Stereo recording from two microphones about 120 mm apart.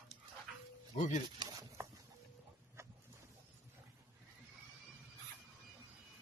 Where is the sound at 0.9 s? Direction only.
85° left.